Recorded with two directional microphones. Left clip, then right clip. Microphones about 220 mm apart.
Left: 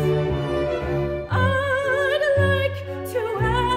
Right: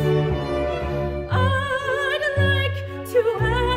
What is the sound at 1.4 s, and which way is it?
Music, 15° left (ahead or behind).